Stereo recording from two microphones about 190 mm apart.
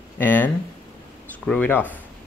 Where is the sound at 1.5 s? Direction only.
10° left (ahead or behind).